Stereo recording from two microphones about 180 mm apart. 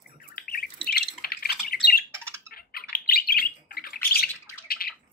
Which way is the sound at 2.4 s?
55° left (ahead or behind).